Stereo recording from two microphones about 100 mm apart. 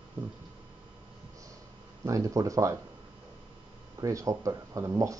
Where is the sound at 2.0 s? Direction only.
35° right (ahead or behind).